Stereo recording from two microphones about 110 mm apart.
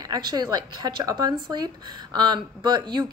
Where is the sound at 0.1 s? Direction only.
40° right (ahead or behind).